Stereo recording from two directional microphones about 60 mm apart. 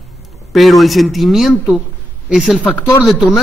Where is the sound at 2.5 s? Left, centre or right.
Left.